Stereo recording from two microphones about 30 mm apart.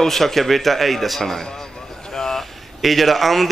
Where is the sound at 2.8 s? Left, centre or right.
Centre.